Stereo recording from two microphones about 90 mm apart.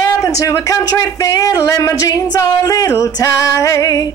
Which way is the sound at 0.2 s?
35° left (ahead or behind).